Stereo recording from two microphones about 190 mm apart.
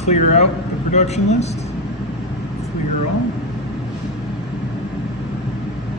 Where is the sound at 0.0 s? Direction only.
35° left (ahead or behind).